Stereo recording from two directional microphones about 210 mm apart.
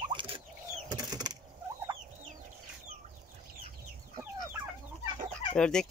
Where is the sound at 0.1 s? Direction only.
25° right (ahead or behind).